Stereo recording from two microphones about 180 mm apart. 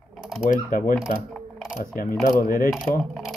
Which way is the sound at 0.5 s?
50° left (ahead or behind).